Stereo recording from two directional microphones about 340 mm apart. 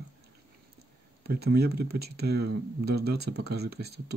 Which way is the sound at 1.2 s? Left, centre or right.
Right.